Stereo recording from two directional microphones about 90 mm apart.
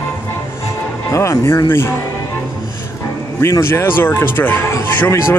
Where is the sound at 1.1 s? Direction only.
35° left (ahead or behind).